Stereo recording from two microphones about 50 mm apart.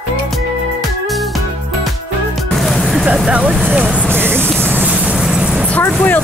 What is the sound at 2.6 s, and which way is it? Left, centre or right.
Music, centre.